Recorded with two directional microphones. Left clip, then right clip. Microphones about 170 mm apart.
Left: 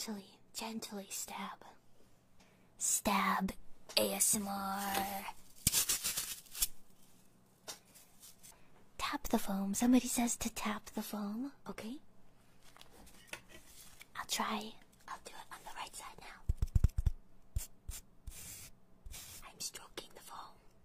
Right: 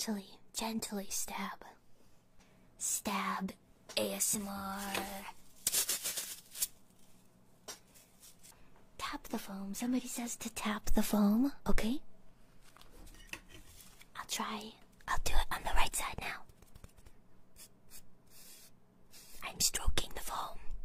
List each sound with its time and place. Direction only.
0.0 s speech: 15° right (ahead or behind)
2.8 s speech: 20° left (ahead or behind)
5.7 s a sound: 35° left (ahead or behind)
8.9 s speech: 20° left (ahead or behind)
10.5 s speech: centre (ahead or behind)
10.9 s speech: 15° right (ahead or behind)
14.1 s speech: 15° left (ahead or behind)
15.2 s whispering: 30° right (ahead or behind)
19.4 s whispering: 30° right (ahead or behind)